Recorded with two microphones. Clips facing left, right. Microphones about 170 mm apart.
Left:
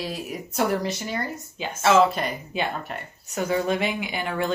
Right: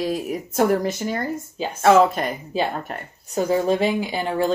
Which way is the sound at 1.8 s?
55° right (ahead or behind).